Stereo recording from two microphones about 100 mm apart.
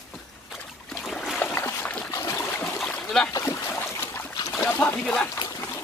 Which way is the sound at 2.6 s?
10° left (ahead or behind).